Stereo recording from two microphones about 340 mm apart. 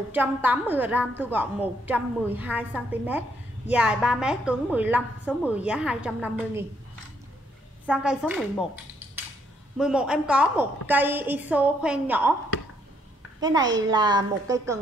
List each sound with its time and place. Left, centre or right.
0.1 s a woman's voice: centre
7.8 s a woman's voice: centre
9.8 s a woman's voice: centre
13.4 s a child's voice: centre